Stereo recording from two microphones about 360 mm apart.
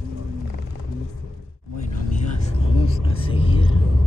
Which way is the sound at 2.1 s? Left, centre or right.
Centre.